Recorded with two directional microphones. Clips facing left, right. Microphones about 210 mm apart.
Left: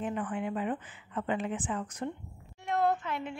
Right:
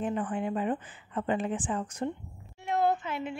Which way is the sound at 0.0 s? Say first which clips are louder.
Right 3 dB; 30° right (ahead or behind).